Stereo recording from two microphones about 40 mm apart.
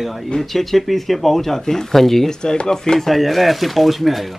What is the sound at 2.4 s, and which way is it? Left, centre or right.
Speech, centre.